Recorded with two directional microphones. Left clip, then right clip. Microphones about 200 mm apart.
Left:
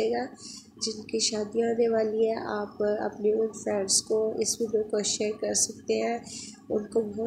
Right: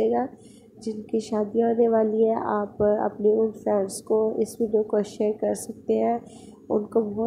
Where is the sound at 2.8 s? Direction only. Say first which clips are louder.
Right 6 dB; 15° right (ahead or behind).